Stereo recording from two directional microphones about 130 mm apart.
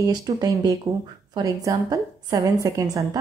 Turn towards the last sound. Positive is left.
turn(degrees=-30)  # may be behind; listen again after turning